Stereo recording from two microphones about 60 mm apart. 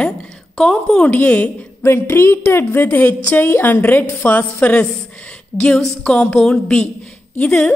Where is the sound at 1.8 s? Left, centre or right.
Left.